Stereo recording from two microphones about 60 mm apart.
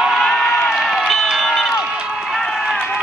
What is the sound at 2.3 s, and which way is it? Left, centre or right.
Run, centre.